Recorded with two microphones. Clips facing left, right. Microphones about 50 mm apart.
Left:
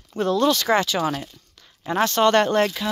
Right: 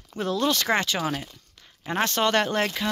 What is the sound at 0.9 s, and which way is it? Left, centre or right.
Speech, centre.